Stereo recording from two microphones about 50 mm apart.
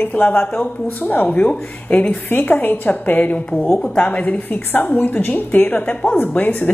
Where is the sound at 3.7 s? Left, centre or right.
Centre; by 6.7 s left.